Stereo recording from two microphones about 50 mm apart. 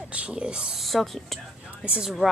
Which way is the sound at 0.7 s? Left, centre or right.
Centre.